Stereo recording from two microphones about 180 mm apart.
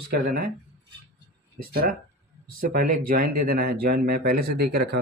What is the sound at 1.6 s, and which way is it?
Speech, 55° right (ahead or behind).